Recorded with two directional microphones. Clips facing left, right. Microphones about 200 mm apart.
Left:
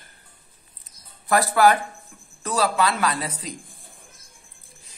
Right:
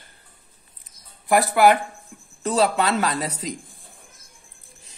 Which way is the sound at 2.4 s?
30° right (ahead or behind).